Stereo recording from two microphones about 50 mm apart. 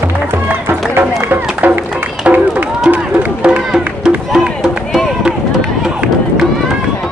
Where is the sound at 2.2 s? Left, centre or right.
Right.